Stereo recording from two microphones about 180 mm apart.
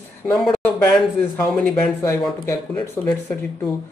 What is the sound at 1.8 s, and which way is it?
Speech, 15° left (ahead or behind).